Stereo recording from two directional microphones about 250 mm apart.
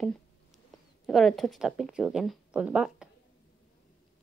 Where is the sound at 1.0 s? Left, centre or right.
Centre.